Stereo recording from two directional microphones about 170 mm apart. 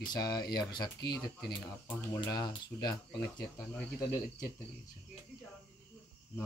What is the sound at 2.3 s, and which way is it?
Speech, 25° left (ahead or behind).